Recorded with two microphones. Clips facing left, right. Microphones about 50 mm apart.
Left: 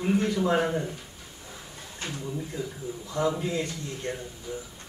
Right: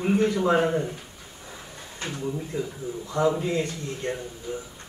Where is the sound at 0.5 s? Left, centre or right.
Right.